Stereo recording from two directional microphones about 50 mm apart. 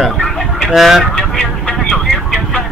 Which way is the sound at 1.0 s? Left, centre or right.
Centre.